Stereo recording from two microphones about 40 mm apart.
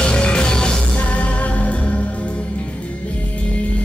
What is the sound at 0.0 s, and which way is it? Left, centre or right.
Music, left.